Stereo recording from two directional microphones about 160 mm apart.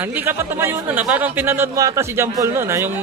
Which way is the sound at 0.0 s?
10° right (ahead or behind).